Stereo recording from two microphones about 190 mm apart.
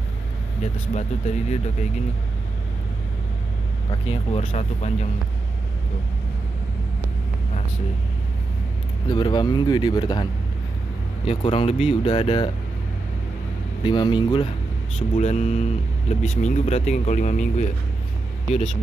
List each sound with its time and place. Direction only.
0.9 s speech: 35° left (ahead or behind)
3.9 s speech: 30° left (ahead or behind)
9.1 s speech: 25° left (ahead or behind)
11.2 s speech: 30° left (ahead or behind)
13.8 s speech: 25° left (ahead or behind)
15.0 s speech: 35° left (ahead or behind)